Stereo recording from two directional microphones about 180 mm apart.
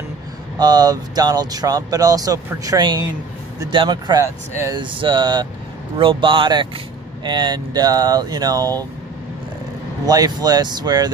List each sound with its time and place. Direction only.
0.6 s speech: 20° right (ahead or behind)
10.0 s speech: 20° right (ahead or behind)